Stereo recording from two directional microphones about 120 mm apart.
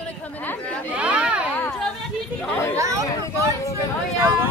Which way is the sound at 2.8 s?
25° right (ahead or behind).